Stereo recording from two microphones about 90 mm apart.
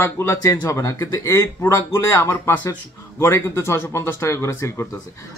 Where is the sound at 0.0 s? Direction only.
30° left (ahead or behind).